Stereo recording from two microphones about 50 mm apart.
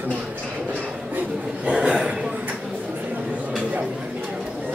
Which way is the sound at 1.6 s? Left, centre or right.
Right.